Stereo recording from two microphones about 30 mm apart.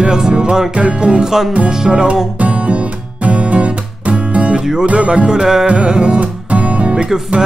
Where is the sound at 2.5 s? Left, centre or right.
Right.